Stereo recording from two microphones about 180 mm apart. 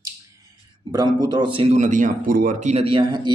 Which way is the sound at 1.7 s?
45° right (ahead or behind).